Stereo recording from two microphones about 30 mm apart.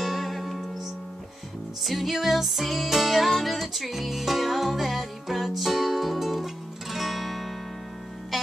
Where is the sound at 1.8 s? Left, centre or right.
Centre.